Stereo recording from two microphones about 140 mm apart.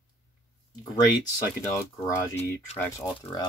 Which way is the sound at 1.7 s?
20° left (ahead or behind).